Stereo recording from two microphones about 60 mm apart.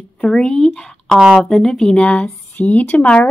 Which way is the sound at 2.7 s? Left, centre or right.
Left.